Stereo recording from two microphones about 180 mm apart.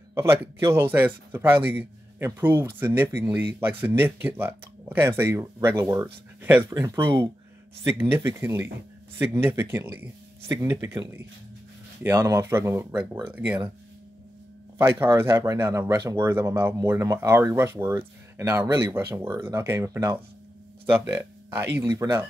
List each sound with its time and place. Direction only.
0.1 s speech: 15° right (ahead or behind)
12.0 s speech: 15° right (ahead or behind)
14.8 s speech: 10° right (ahead or behind)